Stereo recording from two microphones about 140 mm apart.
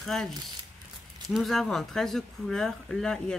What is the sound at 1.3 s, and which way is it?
Speech, centre (ahead or behind).